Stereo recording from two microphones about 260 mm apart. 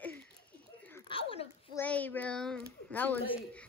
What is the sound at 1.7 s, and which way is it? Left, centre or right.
A child's voice, centre.